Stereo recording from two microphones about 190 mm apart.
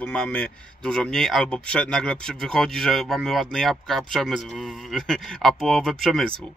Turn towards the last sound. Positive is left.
turn(degrees=0)  # may be behind; listen again after turning